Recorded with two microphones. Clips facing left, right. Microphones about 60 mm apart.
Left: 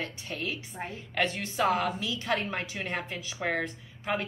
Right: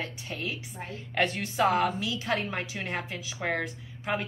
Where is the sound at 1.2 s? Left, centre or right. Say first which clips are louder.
Right 2 dB; centre.